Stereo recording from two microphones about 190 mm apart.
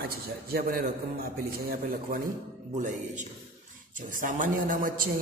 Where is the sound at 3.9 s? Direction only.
45° right (ahead or behind).